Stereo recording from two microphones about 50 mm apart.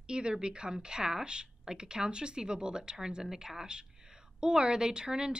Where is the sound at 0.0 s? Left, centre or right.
Centre.